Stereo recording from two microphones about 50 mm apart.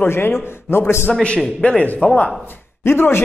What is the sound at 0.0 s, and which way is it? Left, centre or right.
A man's voice, left.